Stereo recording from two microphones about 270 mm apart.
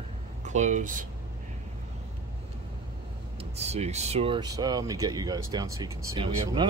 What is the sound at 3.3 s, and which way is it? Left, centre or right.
Speech, right.